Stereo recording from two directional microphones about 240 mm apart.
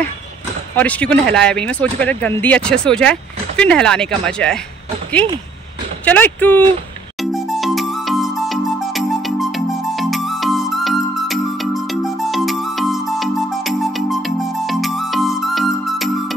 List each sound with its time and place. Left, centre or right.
0.7 s speech: centre
6.0 s speech: centre
7.2 s music: centre